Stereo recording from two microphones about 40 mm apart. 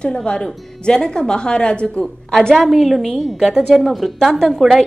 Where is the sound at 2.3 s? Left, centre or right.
Centre.